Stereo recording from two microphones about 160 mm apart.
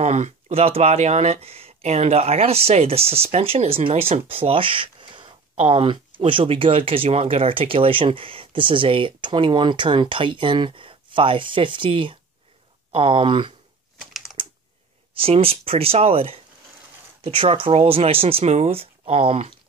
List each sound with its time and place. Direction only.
0.0 s speech: 45° right (ahead or behind); by 13.5 s 30° right (ahead or behind)
14.4 s typing: 30° right (ahead or behind)
15.1 s speech: 35° right (ahead or behind)